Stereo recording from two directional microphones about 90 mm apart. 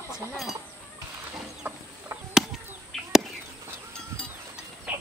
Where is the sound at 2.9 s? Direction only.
Centre (ahead or behind).